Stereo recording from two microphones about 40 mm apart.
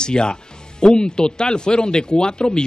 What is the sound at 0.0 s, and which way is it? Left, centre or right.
Speech, left.